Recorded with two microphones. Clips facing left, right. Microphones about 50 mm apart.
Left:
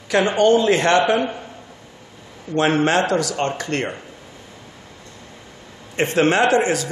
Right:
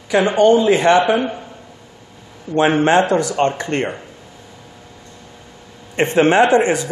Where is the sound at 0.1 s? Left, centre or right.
Centre.